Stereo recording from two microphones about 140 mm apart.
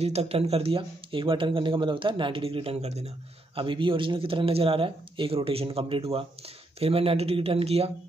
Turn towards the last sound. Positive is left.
turn(degrees=-45)  # may be behind; listen again after turning